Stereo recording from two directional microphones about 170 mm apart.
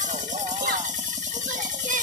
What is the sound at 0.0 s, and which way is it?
Music, 45° right (ahead or behind).